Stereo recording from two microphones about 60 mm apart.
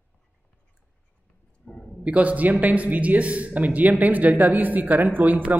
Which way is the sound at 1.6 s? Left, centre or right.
Left.